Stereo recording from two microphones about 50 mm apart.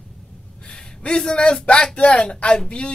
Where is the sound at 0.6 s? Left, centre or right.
Left.